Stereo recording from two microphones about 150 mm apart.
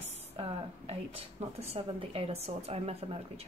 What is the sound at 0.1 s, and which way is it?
Speech, 40° right (ahead or behind).